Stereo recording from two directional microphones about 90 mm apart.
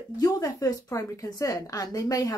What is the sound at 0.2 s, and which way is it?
Speech, 40° left (ahead or behind).